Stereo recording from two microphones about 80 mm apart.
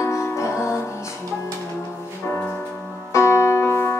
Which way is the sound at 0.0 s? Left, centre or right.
Left.